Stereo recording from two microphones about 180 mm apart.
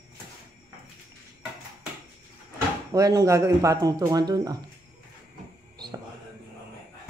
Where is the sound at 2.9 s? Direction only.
20° right (ahead or behind).